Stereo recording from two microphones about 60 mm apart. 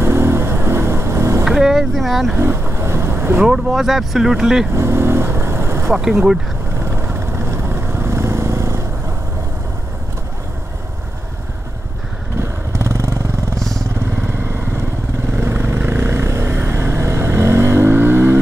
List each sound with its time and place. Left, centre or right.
0.0 s vehicle: right
1.4 s speech: centre
2.3 s vehicle: right
3.4 s speech: centre
4.7 s vehicle: right
12.4 s vehicle: right
13.6 s vehicle: centre
15.3 s vehicle: right